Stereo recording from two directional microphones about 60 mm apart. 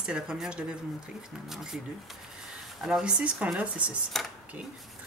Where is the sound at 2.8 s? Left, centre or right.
Centre.